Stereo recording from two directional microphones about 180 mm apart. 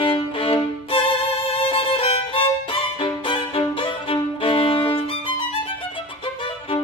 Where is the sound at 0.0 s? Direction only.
30° left (ahead or behind).